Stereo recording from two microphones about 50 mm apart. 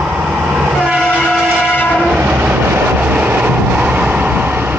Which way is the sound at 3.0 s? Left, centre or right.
Right.